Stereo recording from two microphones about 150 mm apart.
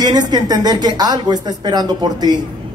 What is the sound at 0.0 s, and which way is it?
Speech, 25° right (ahead or behind).